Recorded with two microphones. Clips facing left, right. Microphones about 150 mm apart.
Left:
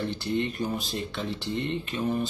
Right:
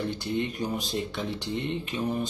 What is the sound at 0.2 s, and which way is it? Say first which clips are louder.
Speech: left 1 dB; 15° right (ahead or behind).